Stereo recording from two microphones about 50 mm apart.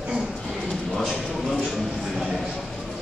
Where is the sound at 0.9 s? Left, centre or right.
Centre.